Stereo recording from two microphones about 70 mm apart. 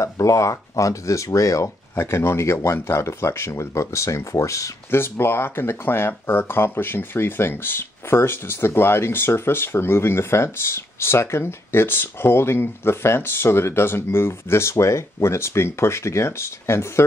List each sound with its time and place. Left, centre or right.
0.0 s speech: left
4.9 s speech: left